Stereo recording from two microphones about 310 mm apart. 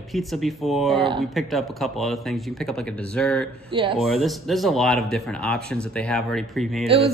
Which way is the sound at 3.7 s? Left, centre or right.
Centre.